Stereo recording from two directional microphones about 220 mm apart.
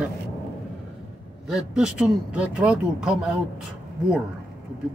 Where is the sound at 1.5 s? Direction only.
5° right (ahead or behind).